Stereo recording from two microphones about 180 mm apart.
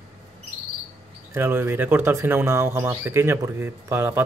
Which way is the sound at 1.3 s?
10° right (ahead or behind).